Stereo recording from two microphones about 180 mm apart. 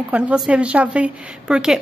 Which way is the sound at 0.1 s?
5° right (ahead or behind).